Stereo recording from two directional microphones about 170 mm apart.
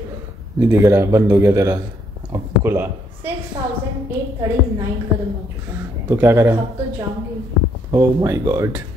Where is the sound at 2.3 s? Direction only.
15° right (ahead or behind).